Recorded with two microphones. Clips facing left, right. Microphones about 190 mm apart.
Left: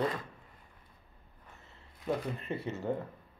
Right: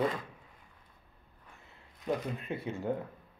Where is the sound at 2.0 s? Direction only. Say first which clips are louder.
Even; centre (ahead or behind).